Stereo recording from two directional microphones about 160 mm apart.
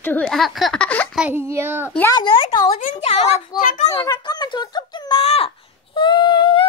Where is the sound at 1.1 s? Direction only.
10° right (ahead or behind).